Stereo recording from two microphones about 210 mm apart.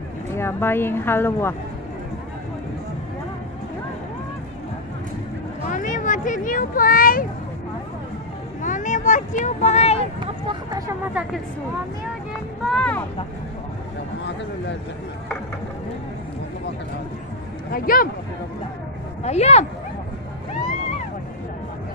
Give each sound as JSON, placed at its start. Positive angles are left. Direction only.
{"t": 0.4, "sound": "speech", "side_deg": 10}
{"t": 5.7, "sound": "a sound", "side_deg": 40}
{"t": 8.6, "sound": "vehicle", "side_deg": 35}
{"t": 10.2, "sound": "speech", "side_deg": -20}
{"t": 12.6, "sound": "speech", "side_deg": 5}
{"t": 17.6, "sound": "speech", "side_deg": 45}
{"t": 19.2, "sound": "speech", "side_deg": 30}